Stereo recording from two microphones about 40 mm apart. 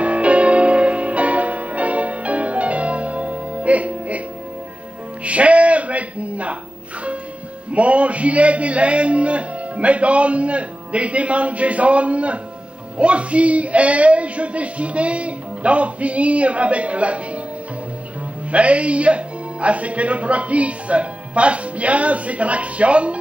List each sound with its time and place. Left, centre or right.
0.0 s music: right
5.2 s music: right
7.7 s a man's voice: right
18.5 s a man's voice: right